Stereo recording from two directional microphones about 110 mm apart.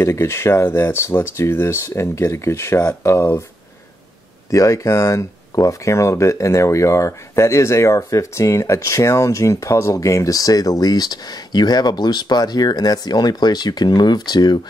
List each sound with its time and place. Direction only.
0.0 s speech: 25° left (ahead or behind)
4.5 s speech: 30° left (ahead or behind)